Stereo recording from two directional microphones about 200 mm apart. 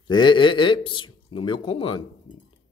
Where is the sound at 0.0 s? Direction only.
25° left (ahead or behind).